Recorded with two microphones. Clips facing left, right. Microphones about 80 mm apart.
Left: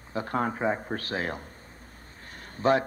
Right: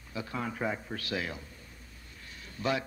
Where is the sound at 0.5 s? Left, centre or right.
Left.